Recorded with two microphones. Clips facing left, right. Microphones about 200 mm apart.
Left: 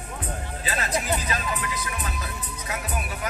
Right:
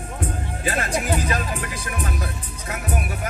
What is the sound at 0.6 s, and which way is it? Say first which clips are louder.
Music: right 4 dB; 50° right (ahead or behind).